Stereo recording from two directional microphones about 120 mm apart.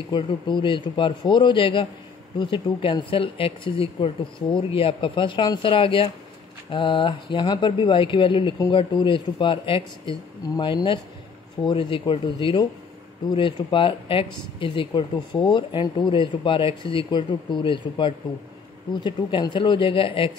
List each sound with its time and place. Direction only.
0.1 s a man's voice: 40° left (ahead or behind)